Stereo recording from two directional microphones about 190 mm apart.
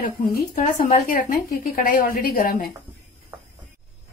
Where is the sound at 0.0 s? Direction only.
45° left (ahead or behind).